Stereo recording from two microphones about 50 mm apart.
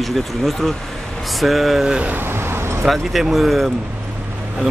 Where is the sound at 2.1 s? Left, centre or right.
Right.